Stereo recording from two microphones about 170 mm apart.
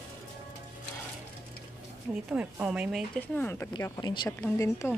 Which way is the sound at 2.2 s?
10° right (ahead or behind).